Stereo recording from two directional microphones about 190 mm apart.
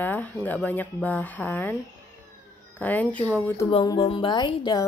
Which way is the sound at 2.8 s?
10° left (ahead or behind).